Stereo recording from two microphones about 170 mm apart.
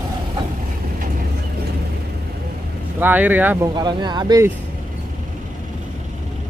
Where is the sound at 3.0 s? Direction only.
10° right (ahead or behind).